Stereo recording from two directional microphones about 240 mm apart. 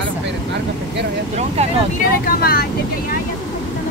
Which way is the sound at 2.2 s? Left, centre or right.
Left.